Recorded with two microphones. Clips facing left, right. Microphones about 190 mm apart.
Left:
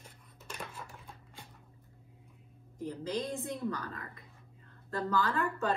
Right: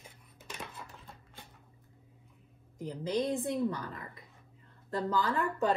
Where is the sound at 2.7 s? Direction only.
15° right (ahead or behind).